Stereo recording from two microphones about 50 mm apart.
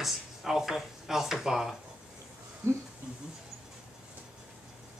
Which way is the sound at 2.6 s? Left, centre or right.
Right.